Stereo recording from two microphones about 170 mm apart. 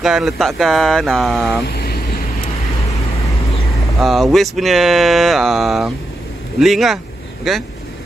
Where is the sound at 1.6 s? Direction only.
65° left (ahead or behind).